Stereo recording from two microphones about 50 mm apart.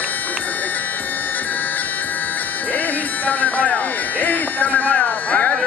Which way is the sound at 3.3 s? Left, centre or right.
Left.